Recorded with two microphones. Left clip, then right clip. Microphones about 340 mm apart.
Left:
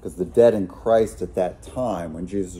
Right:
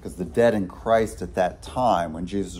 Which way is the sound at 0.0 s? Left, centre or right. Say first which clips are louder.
Left 5 dB; centre.